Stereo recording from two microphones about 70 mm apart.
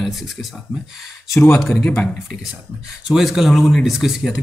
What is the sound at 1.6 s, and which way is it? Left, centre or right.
Speech, centre.